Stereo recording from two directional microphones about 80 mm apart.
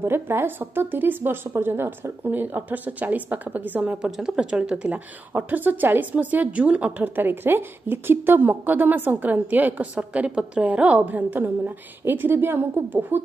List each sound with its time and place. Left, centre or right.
0.0 s a woman's voice: right
4.0 s a woman's voice: centre; by 13.2 s right